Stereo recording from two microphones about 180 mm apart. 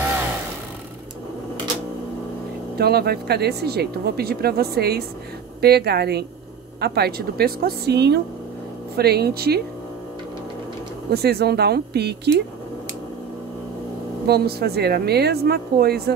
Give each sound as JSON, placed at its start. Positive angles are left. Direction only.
{"t": 2.8, "sound": "speech", "side_deg": -60}
{"t": 11.1, "sound": "speech", "side_deg": -60}
{"t": 14.2, "sound": "speech", "side_deg": -60}